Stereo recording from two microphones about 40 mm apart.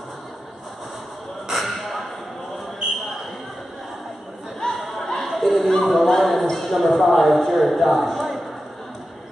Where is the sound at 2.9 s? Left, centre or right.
Centre.